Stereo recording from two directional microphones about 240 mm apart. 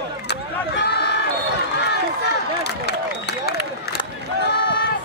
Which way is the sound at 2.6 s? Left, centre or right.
Left.